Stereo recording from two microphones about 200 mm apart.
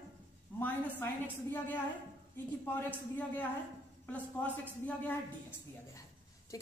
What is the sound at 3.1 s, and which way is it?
A woman's voice, 10° left (ahead or behind).